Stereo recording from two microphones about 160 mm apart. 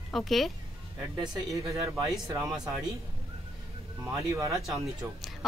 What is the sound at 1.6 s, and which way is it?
Speech, 20° right (ahead or behind).